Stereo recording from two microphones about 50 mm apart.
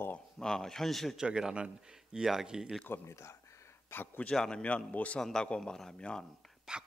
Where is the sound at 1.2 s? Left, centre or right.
Centre.